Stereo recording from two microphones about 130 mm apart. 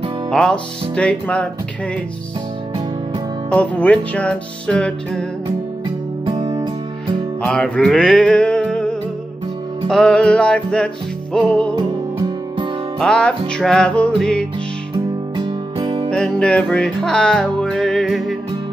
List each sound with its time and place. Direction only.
0.3 s music: 5° left (ahead or behind)
3.4 s music: 10° left (ahead or behind)
6.3 s music: 30° right (ahead or behind)
7.4 s music: 5° left (ahead or behind)
13.0 s music: 5° left (ahead or behind)
15.3 s music: 40° right (ahead or behind)
16.1 s music: 5° left (ahead or behind)